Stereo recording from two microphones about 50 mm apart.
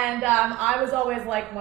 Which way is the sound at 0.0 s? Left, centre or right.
Centre.